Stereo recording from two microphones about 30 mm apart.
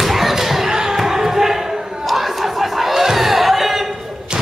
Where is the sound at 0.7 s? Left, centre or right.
Centre.